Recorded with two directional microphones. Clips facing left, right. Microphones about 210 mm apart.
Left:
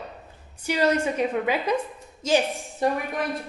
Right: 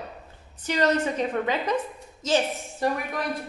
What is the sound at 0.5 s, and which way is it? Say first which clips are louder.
A woman's voice: left 1 dB; 10° left (ahead or behind).